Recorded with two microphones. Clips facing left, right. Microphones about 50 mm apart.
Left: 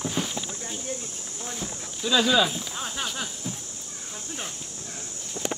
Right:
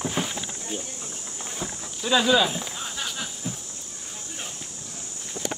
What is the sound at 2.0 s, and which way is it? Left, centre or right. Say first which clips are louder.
Speech: right 1 dB; centre.